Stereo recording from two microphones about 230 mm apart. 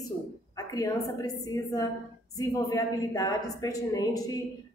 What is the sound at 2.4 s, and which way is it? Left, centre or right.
A woman's voice, centre.